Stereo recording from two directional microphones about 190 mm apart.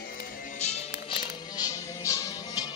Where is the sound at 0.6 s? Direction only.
35° left (ahead or behind).